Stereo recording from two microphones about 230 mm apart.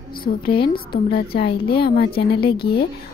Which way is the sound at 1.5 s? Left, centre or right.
Left.